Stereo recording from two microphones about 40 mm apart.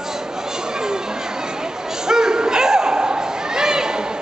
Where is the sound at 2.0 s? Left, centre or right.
Centre.